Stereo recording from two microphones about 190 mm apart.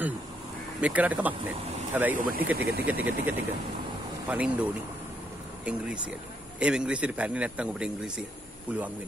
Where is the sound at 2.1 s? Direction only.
45° right (ahead or behind).